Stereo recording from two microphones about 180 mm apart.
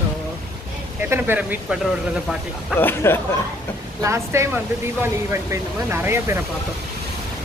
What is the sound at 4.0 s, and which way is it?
Speech, 15° right (ahead or behind).